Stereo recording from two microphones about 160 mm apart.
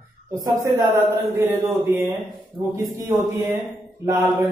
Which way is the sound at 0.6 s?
15° right (ahead or behind).